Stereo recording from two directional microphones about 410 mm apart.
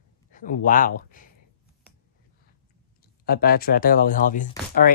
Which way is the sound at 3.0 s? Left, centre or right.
Left.